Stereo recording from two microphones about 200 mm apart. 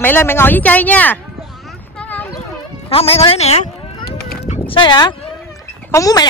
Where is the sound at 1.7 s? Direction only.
5° left (ahead or behind).